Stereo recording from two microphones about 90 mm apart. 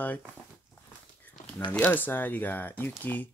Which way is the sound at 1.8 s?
20° left (ahead or behind).